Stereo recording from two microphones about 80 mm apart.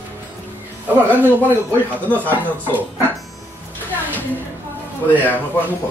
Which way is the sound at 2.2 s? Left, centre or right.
Left.